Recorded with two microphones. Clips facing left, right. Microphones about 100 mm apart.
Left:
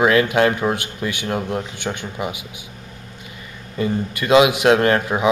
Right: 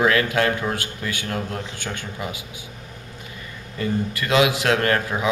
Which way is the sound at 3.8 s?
20° left (ahead or behind).